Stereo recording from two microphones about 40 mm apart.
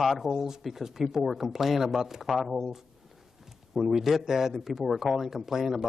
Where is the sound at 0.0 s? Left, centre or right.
Centre.